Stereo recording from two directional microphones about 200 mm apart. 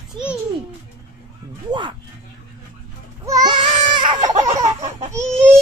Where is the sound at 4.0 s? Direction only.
20° right (ahead or behind).